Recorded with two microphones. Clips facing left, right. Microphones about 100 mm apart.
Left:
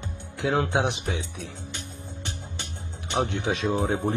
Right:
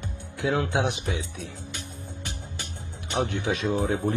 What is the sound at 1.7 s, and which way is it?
Music, 30° left (ahead or behind).